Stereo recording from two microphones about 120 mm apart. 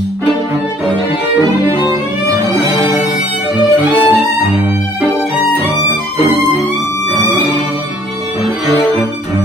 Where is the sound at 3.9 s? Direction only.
15° right (ahead or behind).